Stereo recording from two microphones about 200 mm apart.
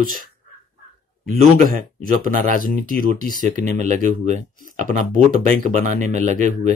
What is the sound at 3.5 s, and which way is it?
Speech, 35° right (ahead or behind).